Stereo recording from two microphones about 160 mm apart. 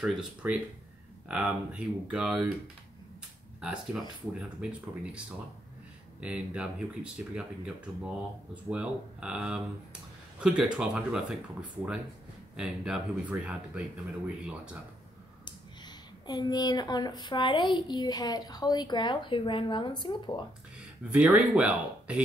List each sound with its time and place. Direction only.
0.0 s speech: 5° right (ahead or behind)
3.6 s speech: 5° right (ahead or behind)
6.2 s speech: 5° right (ahead or behind)
12.5 s speech: 5° right (ahead or behind)
15.4 s speech: 25° left (ahead or behind)
21.1 s speech: 5° right (ahead or behind)